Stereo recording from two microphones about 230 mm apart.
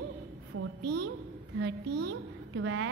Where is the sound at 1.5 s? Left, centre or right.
Right.